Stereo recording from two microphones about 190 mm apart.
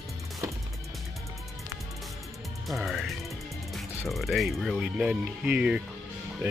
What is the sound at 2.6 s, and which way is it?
Speech, centre (ahead or behind).